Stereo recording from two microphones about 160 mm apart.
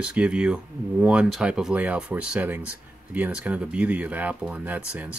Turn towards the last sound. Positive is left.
turn(degrees=-10)  # may be behind; listen again after turning